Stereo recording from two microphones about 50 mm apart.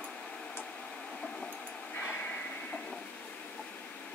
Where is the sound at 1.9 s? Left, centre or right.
Left.